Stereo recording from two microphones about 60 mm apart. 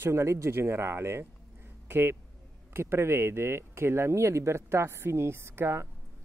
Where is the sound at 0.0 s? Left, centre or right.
Right.